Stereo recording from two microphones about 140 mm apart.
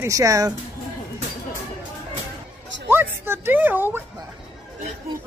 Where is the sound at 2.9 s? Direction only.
15° right (ahead or behind).